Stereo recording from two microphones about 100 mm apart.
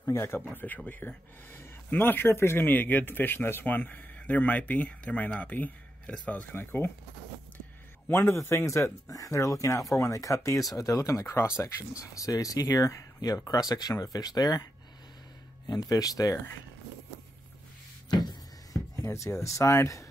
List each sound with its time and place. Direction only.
0.0 s speech: 25° left (ahead or behind)
8.1 s speech: 25° left (ahead or behind)
18.1 s a sound: 45° left (ahead or behind)
18.9 s speech: 30° left (ahead or behind)